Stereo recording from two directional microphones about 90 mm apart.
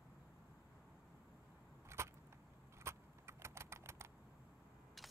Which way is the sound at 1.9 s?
30° right (ahead or behind).